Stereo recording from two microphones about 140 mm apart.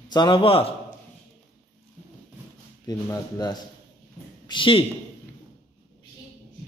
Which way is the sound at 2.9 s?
25° left (ahead or behind).